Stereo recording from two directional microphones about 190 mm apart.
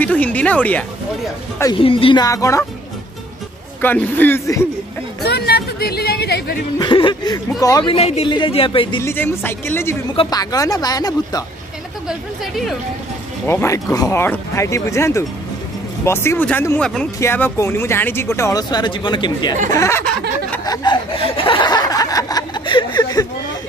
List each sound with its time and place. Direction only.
0.0 s speech: 10° left (ahead or behind)
1.7 s speech: 30° left (ahead or behind)
3.8 s speech: 10° left (ahead or behind)
5.2 s music: 60° left (ahead or behind)
6.8 s speech: 25° left (ahead or behind)
9.0 s speech: 10° left (ahead or behind)
12.1 s speech: centre (ahead or behind)
13.5 s speech: 15° left (ahead or behind)
20.6 s snicker: 20° left (ahead or behind)